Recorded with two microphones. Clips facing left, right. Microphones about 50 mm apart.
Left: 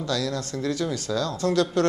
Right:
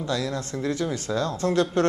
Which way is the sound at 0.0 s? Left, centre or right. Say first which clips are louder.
Even; right.